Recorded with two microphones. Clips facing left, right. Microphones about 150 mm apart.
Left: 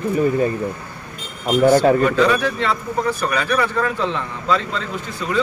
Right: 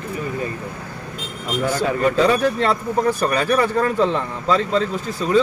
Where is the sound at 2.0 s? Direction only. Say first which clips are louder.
Even; 40° right (ahead or behind).